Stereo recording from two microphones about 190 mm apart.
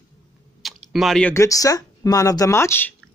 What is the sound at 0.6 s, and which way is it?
Speech, centre (ahead or behind).